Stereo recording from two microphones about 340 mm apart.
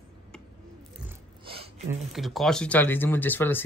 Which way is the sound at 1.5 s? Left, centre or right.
Centre.